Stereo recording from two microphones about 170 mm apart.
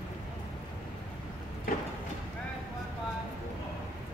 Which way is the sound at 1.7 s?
55° left (ahead or behind).